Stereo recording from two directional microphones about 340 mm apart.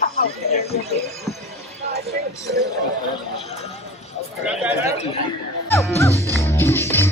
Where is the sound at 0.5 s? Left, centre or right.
Centre.